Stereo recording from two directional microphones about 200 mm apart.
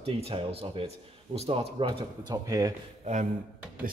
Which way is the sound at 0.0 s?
30° right (ahead or behind).